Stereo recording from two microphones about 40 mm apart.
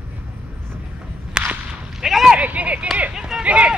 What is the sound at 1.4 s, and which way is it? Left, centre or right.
Whip, centre.